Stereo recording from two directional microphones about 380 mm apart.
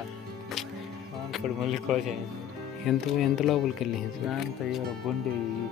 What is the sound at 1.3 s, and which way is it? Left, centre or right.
Speech, centre.